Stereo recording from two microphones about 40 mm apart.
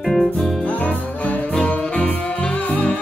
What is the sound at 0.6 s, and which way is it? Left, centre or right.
Music, left.